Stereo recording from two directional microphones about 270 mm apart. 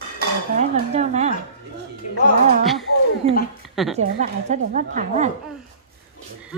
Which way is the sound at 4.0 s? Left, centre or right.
Right.